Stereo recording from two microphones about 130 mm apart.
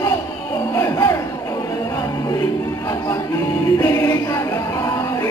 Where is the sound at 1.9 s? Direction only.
25° left (ahead or behind).